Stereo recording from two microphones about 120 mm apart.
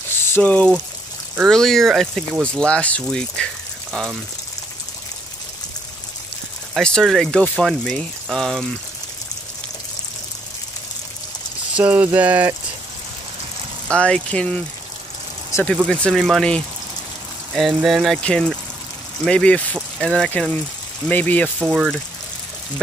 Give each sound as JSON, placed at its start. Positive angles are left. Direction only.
{"t": 0.2, "sound": "speech", "side_deg": 15}
{"t": 6.7, "sound": "speech", "side_deg": 5}
{"t": 11.7, "sound": "a sound", "side_deg": -10}
{"t": 13.9, "sound": "speech", "side_deg": 10}
{"t": 15.5, "sound": "speech", "side_deg": 25}
{"t": 15.9, "sound": "speech", "side_deg": 5}
{"t": 21.5, "sound": "speech", "side_deg": -5}